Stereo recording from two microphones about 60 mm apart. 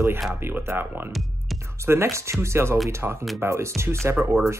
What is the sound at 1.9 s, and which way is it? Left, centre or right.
Speech, right.